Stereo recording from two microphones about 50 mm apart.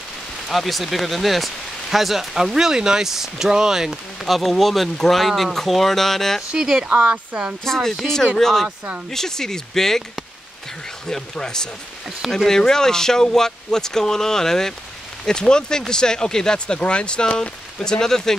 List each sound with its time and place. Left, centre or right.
0.5 s speech: centre
6.5 s speech: centre
7.6 s speech: centre
8.6 s speech: right
9.1 s speech: centre